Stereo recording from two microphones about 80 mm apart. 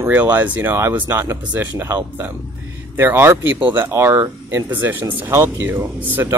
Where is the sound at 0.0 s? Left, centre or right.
Right.